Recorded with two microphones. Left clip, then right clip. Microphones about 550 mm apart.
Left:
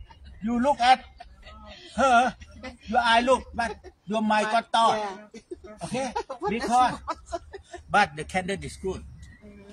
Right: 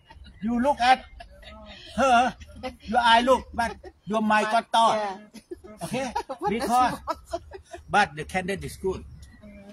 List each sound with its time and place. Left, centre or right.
0.5 s a man's voice: right
2.0 s a man's voice: right
7.9 s a man's voice: right